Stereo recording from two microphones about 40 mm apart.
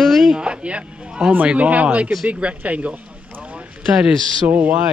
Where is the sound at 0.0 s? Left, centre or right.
Centre.